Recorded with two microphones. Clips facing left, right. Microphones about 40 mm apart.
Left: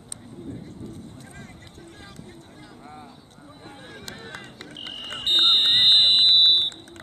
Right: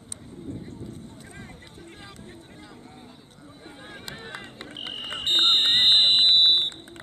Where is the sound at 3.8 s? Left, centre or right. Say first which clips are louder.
Right 1 dB; centre.